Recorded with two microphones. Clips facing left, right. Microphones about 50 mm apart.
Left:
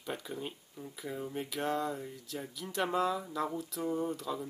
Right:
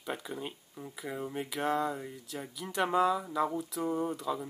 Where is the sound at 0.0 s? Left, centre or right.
Centre.